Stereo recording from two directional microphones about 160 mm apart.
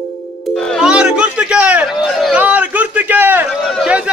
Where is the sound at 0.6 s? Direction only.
Centre (ahead or behind).